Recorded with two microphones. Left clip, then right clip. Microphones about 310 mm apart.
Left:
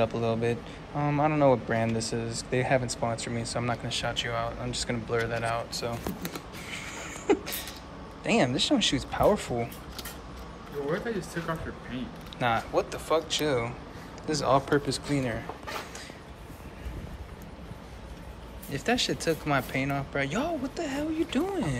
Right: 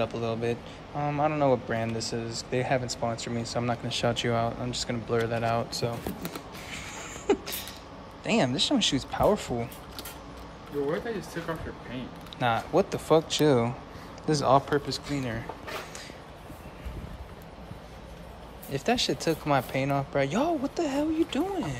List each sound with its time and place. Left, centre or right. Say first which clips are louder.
0.0 s a man's voice: left 2 dB; centre
8.2 s a man's voice: even; centre
10.9 s speech: even; right
12.4 s a man's voice: right 2 dB; centre
18.7 s a man's voice: right 1 dB; centre